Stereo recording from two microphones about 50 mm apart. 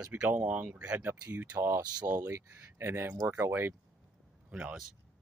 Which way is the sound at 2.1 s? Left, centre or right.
Right.